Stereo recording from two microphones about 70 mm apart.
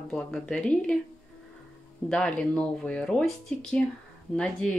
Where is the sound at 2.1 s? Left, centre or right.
Centre.